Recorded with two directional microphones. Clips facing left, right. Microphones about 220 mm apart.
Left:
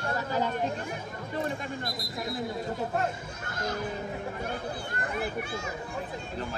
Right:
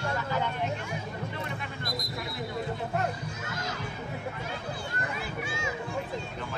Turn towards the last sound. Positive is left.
turn(degrees=55)  # may be behind; listen again after turning